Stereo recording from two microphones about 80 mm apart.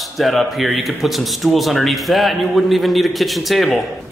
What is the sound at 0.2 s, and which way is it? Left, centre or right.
Speech, centre.